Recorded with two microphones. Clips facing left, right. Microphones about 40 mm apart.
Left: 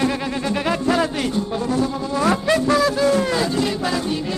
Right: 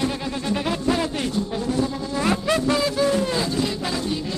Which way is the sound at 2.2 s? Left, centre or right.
Left.